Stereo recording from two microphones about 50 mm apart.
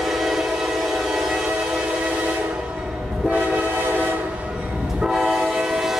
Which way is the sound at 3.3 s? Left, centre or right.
Right.